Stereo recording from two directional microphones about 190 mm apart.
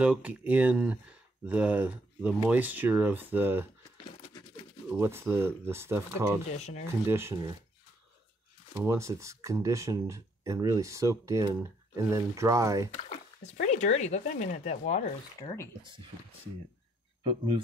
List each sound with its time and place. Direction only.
0.0 s speech: 5° right (ahead or behind)
4.9 s speech: 10° right (ahead or behind)
6.5 s speech: 35° left (ahead or behind)
7.1 s speech: 15° right (ahead or behind)
8.7 s speech: 15° right (ahead or behind)
12.9 s speech: 35° left (ahead or behind)
17.2 s speech: 25° right (ahead or behind)